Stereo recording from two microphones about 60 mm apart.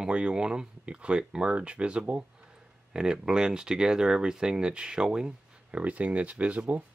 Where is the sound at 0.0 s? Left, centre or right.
Centre.